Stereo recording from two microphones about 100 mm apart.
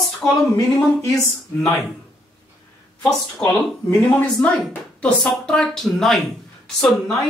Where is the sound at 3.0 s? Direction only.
30° left (ahead or behind).